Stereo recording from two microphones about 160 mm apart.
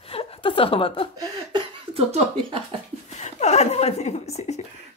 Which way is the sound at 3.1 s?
45° left (ahead or behind).